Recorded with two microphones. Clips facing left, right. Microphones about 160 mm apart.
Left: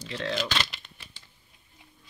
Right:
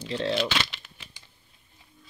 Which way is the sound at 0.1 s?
30° right (ahead or behind).